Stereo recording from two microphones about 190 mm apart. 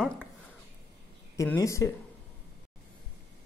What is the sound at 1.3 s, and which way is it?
Speech, 15° left (ahead or behind).